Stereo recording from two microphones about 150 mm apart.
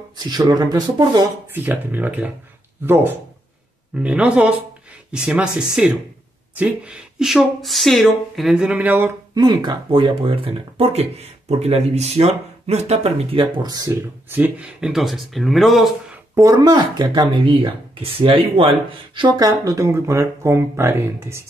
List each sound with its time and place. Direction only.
0.2 s speech: 25° right (ahead or behind)
1.5 s speech: 15° right (ahead or behind)
9.3 s speech: 30° right (ahead or behind)
14.3 s speech: 10° right (ahead or behind)
16.3 s speech: 25° right (ahead or behind)